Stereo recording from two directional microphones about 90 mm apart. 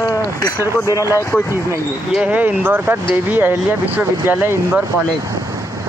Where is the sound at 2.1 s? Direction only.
15° right (ahead or behind).